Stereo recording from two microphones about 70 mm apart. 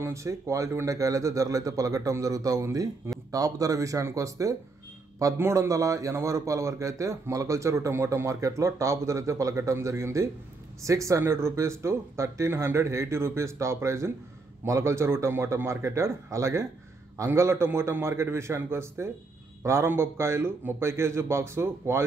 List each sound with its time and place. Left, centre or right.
0.0 s a man's voice: right